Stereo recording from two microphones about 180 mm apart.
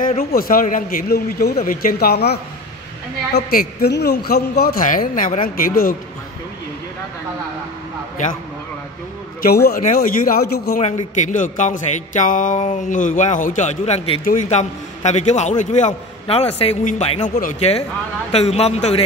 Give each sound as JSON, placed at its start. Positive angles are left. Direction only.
{"t": 0.0, "sound": "a man's voice", "side_deg": 50}
{"t": 3.3, "sound": "a man's voice", "side_deg": 60}
{"t": 9.4, "sound": "speech", "side_deg": 55}
{"t": 10.8, "sound": "a man's voice", "side_deg": 40}